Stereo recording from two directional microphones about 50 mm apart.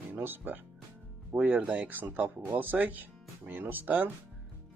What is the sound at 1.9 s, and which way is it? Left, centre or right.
Speech, right.